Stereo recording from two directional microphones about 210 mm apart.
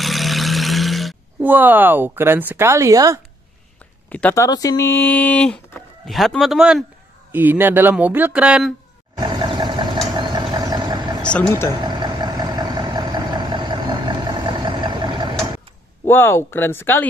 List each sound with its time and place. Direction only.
0.0 s a sound: centre (ahead or behind); by 3.2 s 15° right (ahead or behind)
4.1 s speech: 10° left (ahead or behind)
9.2 s vehicle: 20° right (ahead or behind)
11.2 s speech: 10° left (ahead or behind)
11.8 s vehicle: 20° right (ahead or behind)
16.1 s speech: 10° left (ahead or behind)